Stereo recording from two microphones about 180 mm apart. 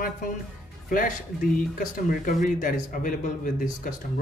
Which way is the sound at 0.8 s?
50° left (ahead or behind).